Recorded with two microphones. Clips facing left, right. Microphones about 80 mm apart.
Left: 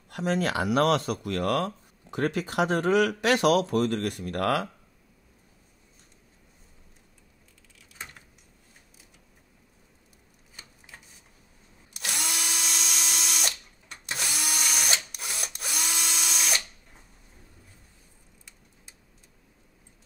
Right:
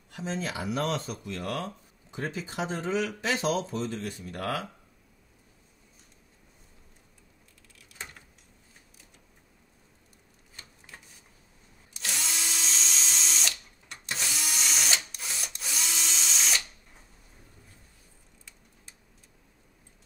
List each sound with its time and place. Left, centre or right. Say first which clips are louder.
0.1 s speech: left 7 dB; left
12.2 s drill: left 3 dB; left
14.3 s printer: left 3 dB; left
15.2 s drill: left 2 dB; left